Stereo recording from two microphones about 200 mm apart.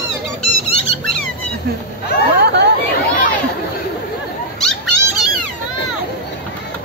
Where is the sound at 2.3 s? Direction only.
55° right (ahead or behind).